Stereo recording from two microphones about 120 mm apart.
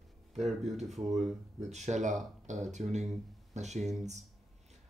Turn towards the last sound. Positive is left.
turn(degrees=-75)  # may be behind; listen again after turning